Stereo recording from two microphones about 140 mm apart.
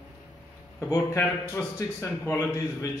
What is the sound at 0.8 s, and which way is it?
A man's voice, 20° left (ahead or behind).